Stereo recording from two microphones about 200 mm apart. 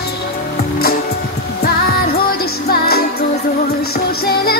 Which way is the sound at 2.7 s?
50° left (ahead or behind).